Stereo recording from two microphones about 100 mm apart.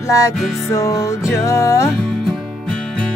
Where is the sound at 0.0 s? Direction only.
30° left (ahead or behind).